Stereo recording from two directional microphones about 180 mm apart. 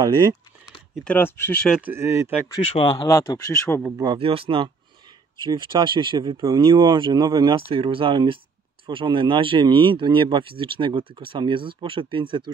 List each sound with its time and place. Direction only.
0.0 s speech: 25° right (ahead or behind)
1.0 s speech: 10° left (ahead or behind)
1.8 s speech: 10° right (ahead or behind)
2.7 s speech: 25° left (ahead or behind)
4.0 s speech: 30° right (ahead or behind)